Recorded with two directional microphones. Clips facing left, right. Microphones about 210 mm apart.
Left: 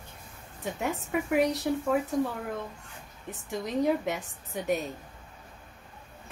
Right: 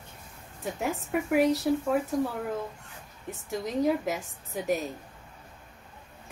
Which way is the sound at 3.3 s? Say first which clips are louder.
Right 1 dB; centre (ahead or behind).